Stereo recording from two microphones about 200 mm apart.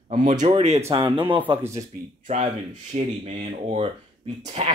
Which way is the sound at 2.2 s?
35° right (ahead or behind).